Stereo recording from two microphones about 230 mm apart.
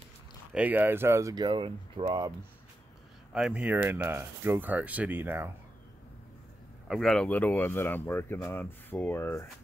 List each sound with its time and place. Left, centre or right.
0.6 s speech: centre
3.3 s speech: centre
6.9 s speech: centre